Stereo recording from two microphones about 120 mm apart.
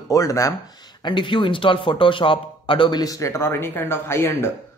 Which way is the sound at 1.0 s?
40° left (ahead or behind).